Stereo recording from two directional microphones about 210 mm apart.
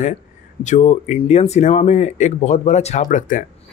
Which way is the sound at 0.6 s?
35° left (ahead or behind).